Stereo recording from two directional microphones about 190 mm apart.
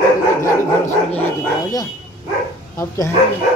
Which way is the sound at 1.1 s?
10° left (ahead or behind).